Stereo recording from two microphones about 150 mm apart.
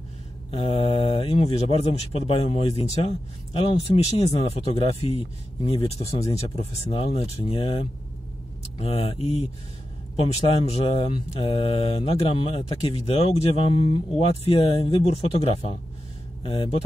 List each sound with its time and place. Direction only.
0.5 s speech: 40° left (ahead or behind)